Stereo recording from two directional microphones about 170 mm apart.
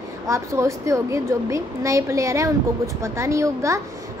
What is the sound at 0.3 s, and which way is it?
A woman's voice, 20° right (ahead or behind).